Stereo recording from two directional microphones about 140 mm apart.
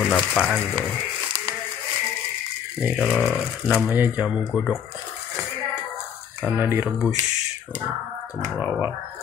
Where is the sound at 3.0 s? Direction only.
Centre (ahead or behind).